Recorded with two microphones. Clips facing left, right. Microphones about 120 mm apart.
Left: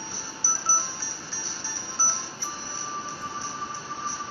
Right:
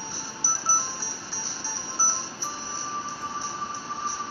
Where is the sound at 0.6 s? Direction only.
15° right (ahead or behind).